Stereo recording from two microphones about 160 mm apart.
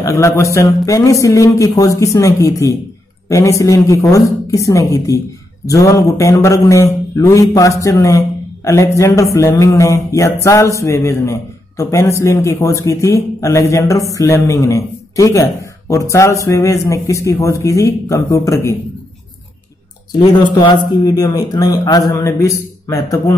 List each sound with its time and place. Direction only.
0.0 s speech: 20° left (ahead or behind)
20.1 s speech: 25° left (ahead or behind)